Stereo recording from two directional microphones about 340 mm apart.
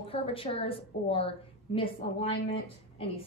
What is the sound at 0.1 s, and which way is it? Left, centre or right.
A woman's voice, centre.